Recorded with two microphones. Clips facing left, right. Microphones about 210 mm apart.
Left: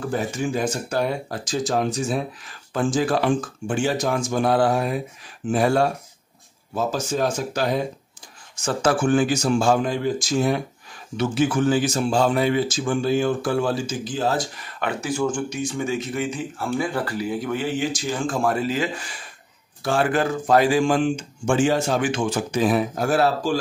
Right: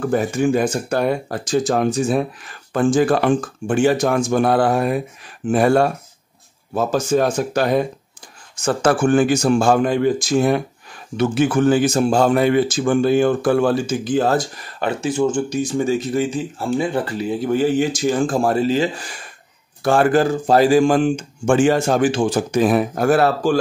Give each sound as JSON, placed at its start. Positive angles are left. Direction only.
{"t": 0.1, "sound": "speech", "side_deg": -55}
{"t": 14.8, "sound": "speech", "side_deg": -30}
{"t": 15.5, "sound": "speech", "side_deg": -35}
{"t": 19.8, "sound": "speech", "side_deg": -55}
{"t": 20.1, "sound": "speech", "side_deg": -35}
{"t": 22.1, "sound": "speech", "side_deg": -30}
{"t": 22.5, "sound": "speech", "side_deg": -50}